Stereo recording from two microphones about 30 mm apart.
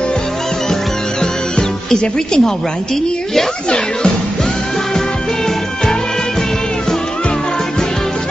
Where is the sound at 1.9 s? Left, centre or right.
Left.